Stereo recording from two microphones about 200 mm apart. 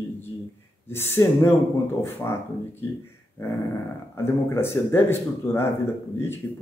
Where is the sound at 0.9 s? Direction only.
10° left (ahead or behind).